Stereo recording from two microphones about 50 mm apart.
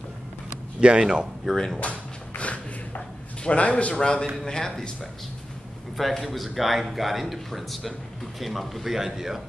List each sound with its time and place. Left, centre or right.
0.7 s speech: centre
1.5 s speech: centre
1.8 s a sound: left
3.4 s a man's voice: left
5.9 s a man's voice: centre